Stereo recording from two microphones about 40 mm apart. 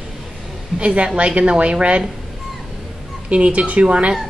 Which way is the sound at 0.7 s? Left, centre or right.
Right.